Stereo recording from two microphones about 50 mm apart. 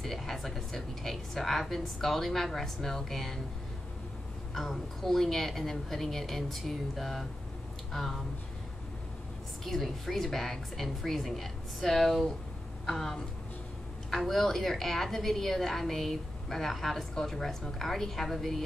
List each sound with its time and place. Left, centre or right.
0.0 s a woman's voice: centre
4.6 s a woman's voice: centre
9.7 s a woman's voice: centre